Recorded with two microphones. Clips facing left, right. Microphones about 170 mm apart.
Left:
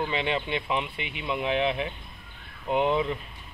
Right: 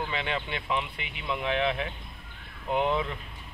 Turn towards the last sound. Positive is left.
turn(degrees=15)  # may be behind; listen again after turning